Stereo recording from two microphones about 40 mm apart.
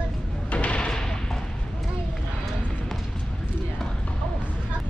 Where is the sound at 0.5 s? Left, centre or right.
Left; by 1.4 s centre.